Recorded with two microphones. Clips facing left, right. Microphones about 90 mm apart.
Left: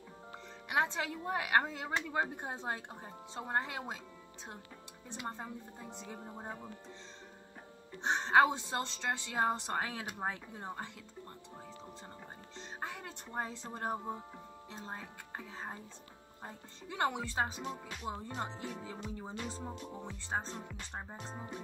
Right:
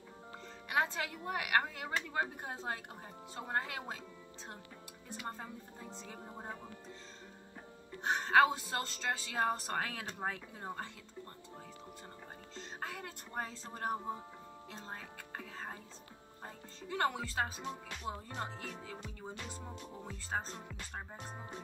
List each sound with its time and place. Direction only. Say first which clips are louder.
0.7 s speech: left 1 dB; 20° left (ahead or behind)
5.1 s speech: left 2 dB; 15° left (ahead or behind)
8.0 s speech: left 1 dB; 20° left (ahead or behind)
12.5 s speech: left 1 dB; 20° left (ahead or behind)